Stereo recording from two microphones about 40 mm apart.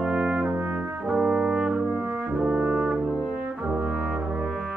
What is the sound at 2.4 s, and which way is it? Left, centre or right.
Brass instrument, right.